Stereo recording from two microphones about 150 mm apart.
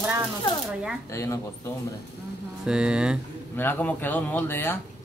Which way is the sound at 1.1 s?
20° left (ahead or behind).